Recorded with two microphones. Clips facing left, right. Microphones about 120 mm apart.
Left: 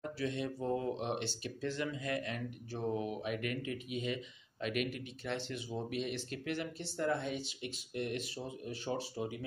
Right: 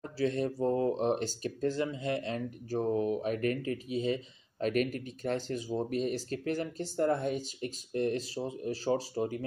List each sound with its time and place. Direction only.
0.2 s speech: 40° right (ahead or behind)
1.9 s speech: 30° right (ahead or behind); by 9.4 s 45° right (ahead or behind)